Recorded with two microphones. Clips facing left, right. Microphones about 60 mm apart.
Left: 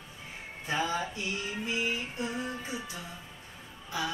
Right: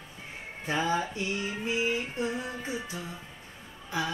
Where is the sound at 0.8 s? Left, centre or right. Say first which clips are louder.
Right 4 dB; right.